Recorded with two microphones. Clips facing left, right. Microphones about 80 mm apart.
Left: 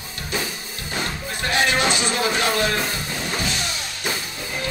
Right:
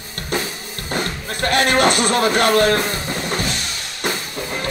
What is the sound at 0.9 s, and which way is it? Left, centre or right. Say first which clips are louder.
Music: right 4 dB; right.